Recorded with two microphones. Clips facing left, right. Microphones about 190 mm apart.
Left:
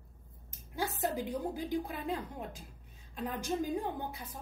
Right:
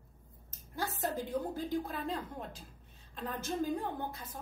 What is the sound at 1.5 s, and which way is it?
Speech, 15° left (ahead or behind).